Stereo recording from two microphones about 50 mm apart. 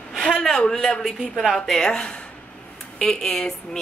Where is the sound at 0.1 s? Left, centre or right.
Centre.